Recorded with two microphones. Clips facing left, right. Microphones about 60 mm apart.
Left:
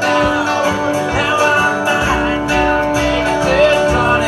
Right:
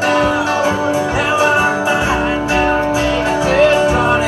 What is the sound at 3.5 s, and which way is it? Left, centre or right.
Music, right.